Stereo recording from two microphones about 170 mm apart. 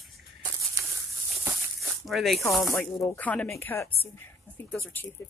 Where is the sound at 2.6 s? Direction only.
15° left (ahead or behind).